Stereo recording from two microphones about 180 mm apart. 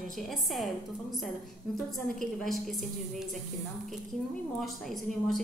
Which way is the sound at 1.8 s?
Centre (ahead or behind).